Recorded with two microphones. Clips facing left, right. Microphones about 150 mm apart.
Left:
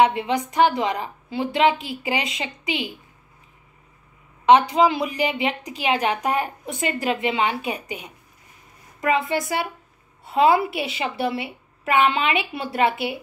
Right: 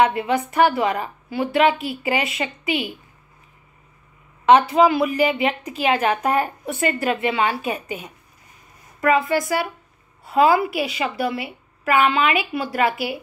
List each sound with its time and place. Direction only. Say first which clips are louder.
0.0 s a woman's voice: even; 20° left (ahead or behind)
4.5 s a woman's voice: right 1 dB; 15° left (ahead or behind)
10.2 s a woman's voice: right 1 dB; 25° left (ahead or behind)